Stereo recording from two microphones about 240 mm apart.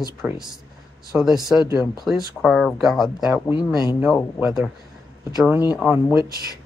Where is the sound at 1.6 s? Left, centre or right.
Centre.